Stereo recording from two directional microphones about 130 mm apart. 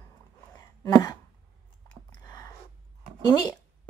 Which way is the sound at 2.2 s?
25° left (ahead or behind).